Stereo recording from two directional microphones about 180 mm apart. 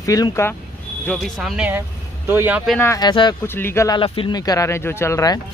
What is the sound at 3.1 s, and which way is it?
Speech, 25° left (ahead or behind).